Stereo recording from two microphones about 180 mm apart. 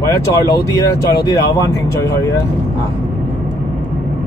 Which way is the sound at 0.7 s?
15° left (ahead or behind).